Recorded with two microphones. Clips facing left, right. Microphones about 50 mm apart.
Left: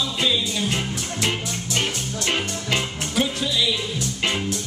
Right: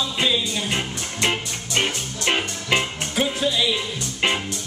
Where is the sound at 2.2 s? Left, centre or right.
Right.